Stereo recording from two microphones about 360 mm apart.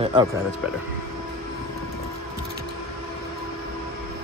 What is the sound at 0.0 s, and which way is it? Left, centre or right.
Speech, centre.